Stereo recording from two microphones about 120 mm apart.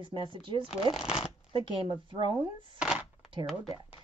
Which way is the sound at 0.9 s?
50° left (ahead or behind).